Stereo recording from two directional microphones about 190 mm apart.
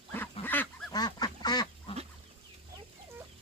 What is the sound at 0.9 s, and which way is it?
Duck, 20° left (ahead or behind).